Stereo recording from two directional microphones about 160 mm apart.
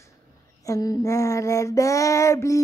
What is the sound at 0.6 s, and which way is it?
Female singing, 20° left (ahead or behind).